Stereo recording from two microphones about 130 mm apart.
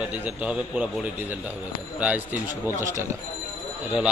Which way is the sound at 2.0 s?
10° right (ahead or behind).